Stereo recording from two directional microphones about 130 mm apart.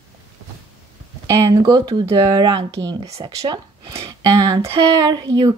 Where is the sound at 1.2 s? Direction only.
25° right (ahead or behind).